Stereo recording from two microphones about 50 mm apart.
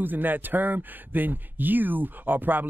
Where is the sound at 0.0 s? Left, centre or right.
Right.